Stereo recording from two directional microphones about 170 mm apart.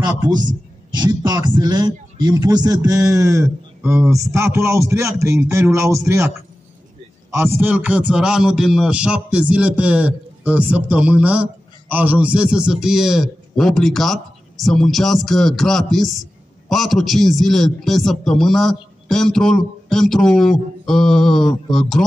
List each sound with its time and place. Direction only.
0.0 s a man's voice: 25° right (ahead or behind)
7.2 s a man's voice: 15° right (ahead or behind); by 22.0 s centre (ahead or behind)